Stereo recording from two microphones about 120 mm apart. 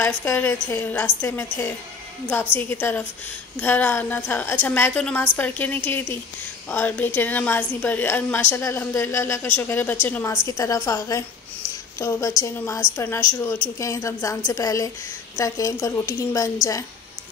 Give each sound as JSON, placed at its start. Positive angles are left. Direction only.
{"t": 0.0, "sound": "a woman's voice", "side_deg": 20}
{"t": 2.7, "sound": "a woman's voice", "side_deg": 15}
{"t": 10.4, "sound": "a woman's voice", "side_deg": 30}